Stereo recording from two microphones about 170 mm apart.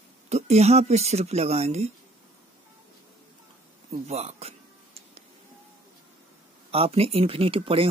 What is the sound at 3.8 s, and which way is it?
Speech, 40° right (ahead or behind).